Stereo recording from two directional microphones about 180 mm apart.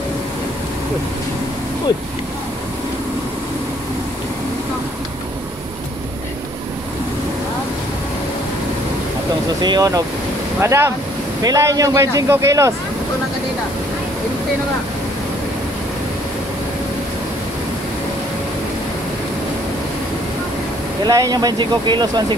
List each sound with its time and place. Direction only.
9.6 s speech: 20° right (ahead or behind)
21.0 s speech: 20° right (ahead or behind)